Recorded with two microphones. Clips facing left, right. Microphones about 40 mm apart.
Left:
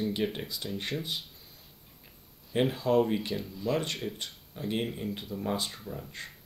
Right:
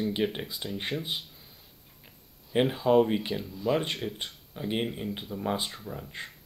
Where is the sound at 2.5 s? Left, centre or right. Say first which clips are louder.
Right 3 dB; centre.